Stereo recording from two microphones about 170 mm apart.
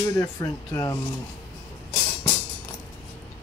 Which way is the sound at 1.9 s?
15° left (ahead or behind).